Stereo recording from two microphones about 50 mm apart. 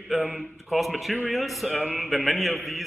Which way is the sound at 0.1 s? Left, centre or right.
Centre.